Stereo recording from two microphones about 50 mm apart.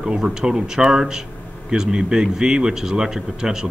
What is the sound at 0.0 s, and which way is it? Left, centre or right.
Speech, centre.